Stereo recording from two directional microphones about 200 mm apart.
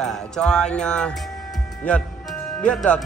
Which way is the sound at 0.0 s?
Centre (ahead or behind).